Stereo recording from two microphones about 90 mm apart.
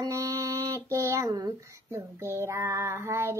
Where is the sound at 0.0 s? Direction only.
40° right (ahead or behind).